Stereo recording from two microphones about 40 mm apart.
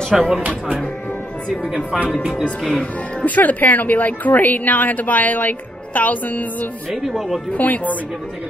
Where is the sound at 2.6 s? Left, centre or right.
Centre.